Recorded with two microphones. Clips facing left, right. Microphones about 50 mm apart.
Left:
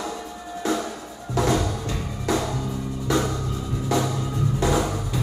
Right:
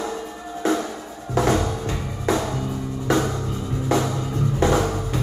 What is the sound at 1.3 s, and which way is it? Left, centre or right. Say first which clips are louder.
Music: right 2 dB; right.